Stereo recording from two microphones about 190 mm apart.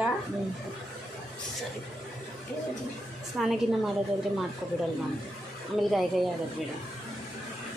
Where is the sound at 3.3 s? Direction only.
Centre (ahead or behind).